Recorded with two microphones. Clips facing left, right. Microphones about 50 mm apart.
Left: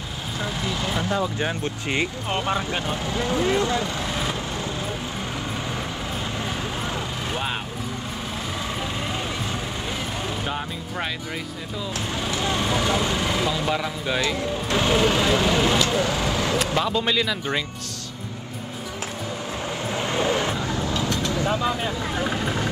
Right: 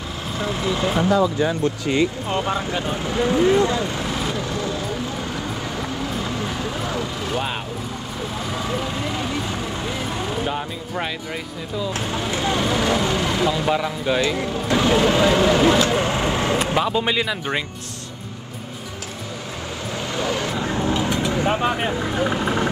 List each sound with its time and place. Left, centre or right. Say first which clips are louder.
0.7 s speech: right 7 dB; right
1.4 s speech: right 6 dB; left
3.1 s speech: right 6 dB; right
10.4 s speech: right 3 dB; centre
11.9 s speech: even; right
13.5 s speech: right 4 dB; centre
14.2 s speech: right 3 dB; right
16.7 s speech: right 2 dB; centre
19.9 s vehicle: left 1 dB; left
20.6 s vehicle: right 4 dB; right
21.1 s vehicle: right 3 dB; right
21.5 s speech: right 3 dB; right
22.1 s speech: right 3 dB; centre